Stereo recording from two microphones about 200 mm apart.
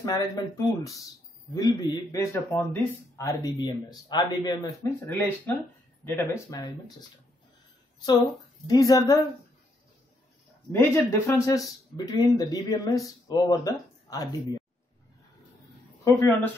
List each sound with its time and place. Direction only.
0.0 s a man's voice: 20° left (ahead or behind)
8.6 s speech: 15° left (ahead or behind)
10.7 s speech: 15° left (ahead or behind)
16.0 s speech: 10° left (ahead or behind)